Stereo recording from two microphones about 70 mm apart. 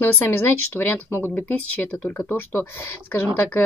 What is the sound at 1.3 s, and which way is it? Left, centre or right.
A woman's voice, left.